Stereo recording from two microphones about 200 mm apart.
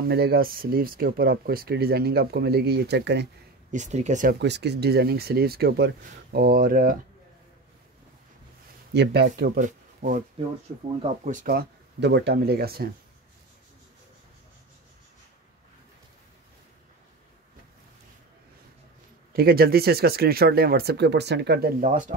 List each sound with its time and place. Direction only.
0.1 s speech: 50° right (ahead or behind)
3.7 s speech: 35° right (ahead or behind)
4.4 s speech: 60° right (ahead or behind)
8.9 s speech: 55° right (ahead or behind)
9.6 s speech: 40° right (ahead or behind)
11.4 s speech: 55° right (ahead or behind)
19.3 s speech: 50° right (ahead or behind)